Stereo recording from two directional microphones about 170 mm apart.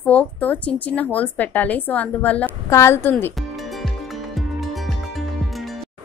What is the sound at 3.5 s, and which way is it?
Music, centre (ahead or behind).